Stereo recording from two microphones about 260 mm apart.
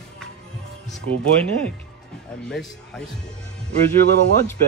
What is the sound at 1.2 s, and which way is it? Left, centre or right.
Speech, centre.